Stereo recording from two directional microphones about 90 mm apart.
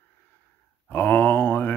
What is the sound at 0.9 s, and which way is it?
Mantra, 20° left (ahead or behind).